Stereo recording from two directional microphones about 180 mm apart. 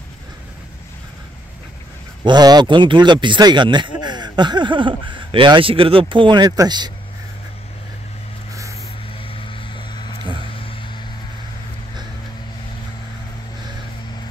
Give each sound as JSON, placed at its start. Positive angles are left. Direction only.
{"t": 2.2, "sound": "speech", "side_deg": -25}
{"t": 9.3, "sound": "vehicle", "side_deg": 30}